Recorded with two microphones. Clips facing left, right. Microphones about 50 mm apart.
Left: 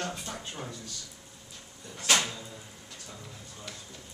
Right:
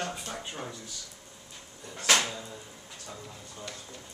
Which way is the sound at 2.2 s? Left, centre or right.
Centre.